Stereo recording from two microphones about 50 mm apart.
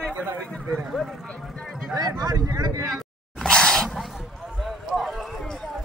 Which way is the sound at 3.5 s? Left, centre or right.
Centre.